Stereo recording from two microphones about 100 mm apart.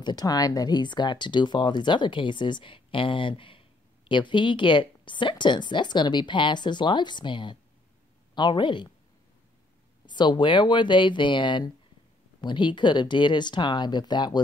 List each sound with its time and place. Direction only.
0.0 s speech: 40° left (ahead or behind)
10.0 s speech: 50° left (ahead or behind)